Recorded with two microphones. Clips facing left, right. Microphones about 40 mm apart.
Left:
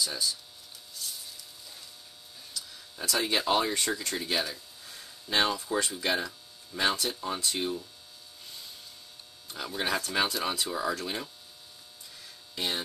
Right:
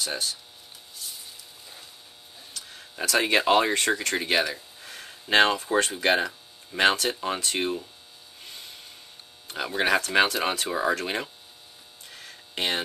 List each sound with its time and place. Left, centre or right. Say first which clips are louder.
0.0 s speech: right 1 dB; right
2.5 s speech: right 2 dB; right
8.4 s electric shaver: right 4 dB; right
9.8 s speech: right 7 dB; right
12.1 s hum: right 7 dB; right